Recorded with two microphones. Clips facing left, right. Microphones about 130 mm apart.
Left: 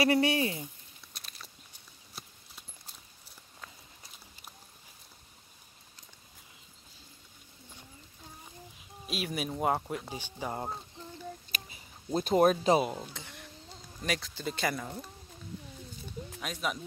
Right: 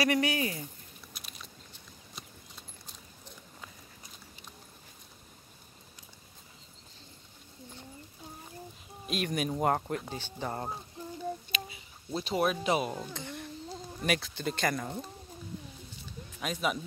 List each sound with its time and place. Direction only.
0.0 s speech: 30° left (ahead or behind)
1.1 s a sound: centre (ahead or behind)
9.0 s speech: 5° left (ahead or behind)
11.5 s a sound: 45° left (ahead or behind)
12.8 s speech: 15° left (ahead or behind)
14.0 s speech: 5° right (ahead or behind)
16.3 s speech: centre (ahead or behind)